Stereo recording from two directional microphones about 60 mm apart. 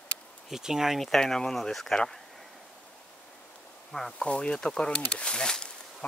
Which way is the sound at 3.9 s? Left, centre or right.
Centre.